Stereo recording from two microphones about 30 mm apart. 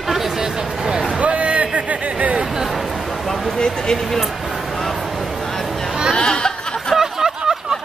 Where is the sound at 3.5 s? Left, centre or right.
Left.